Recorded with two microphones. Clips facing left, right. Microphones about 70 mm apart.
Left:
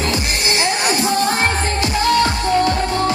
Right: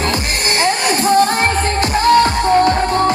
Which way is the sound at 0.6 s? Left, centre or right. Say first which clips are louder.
Right 4 dB; right.